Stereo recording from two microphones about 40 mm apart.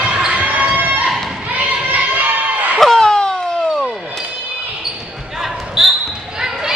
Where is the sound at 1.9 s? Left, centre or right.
Right.